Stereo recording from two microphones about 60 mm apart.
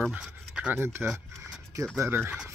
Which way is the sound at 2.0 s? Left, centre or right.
Right.